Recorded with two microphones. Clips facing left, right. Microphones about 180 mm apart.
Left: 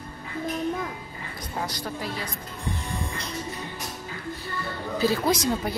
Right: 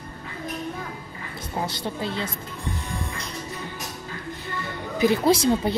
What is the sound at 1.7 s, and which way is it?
Speech, 25° right (ahead or behind).